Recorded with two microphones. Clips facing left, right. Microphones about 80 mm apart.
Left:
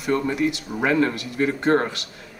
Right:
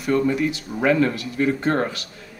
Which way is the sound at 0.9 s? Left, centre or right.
Left.